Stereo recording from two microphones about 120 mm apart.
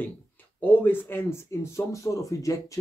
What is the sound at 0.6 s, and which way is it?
Speech, 15° left (ahead or behind).